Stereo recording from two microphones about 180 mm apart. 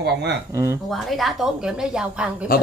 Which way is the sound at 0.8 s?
Centre (ahead or behind).